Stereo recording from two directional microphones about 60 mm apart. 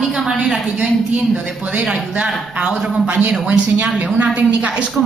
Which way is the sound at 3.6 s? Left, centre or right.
Right.